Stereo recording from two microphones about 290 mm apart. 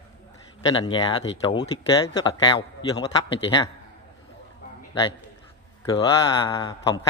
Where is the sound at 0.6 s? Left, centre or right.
Centre.